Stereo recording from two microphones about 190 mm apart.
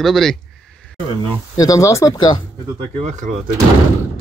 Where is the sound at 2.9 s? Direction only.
35° right (ahead or behind).